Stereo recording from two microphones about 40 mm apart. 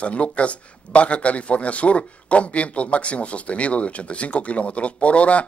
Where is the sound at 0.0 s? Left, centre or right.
Left.